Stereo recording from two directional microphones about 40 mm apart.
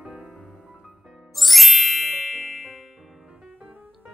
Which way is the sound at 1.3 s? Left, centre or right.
Centre.